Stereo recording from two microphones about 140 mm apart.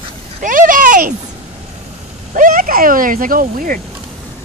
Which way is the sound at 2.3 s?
75° right (ahead or behind).